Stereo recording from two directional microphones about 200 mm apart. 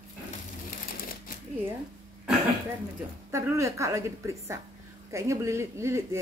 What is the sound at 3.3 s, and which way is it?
A woman's voice, 15° right (ahead or behind).